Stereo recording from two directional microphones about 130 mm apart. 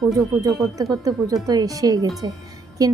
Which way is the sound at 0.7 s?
25° right (ahead or behind).